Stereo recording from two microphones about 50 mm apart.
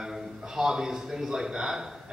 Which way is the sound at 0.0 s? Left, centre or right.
Centre.